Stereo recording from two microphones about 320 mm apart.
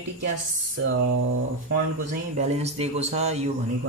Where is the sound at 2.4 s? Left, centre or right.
Centre.